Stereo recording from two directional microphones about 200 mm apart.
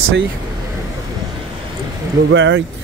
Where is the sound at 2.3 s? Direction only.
65° right (ahead or behind).